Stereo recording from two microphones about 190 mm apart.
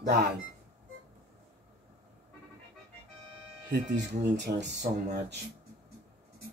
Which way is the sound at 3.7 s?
65° right (ahead or behind).